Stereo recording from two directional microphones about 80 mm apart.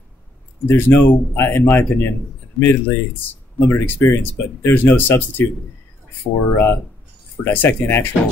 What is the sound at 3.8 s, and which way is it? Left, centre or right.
Speech, left.